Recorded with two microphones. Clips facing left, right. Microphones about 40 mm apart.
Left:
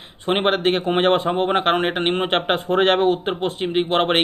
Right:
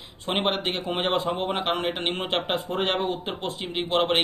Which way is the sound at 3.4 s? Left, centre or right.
Left.